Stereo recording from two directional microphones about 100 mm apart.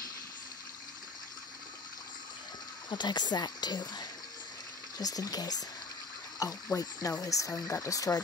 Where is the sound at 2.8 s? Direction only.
45° left (ahead or behind).